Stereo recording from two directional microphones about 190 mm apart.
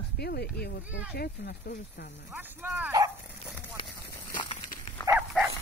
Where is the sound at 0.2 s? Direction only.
55° left (ahead or behind).